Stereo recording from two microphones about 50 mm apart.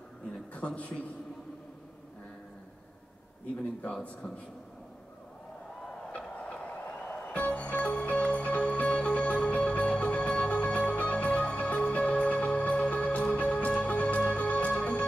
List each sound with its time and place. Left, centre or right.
0.6 s a man's voice: left
6.1 s music: left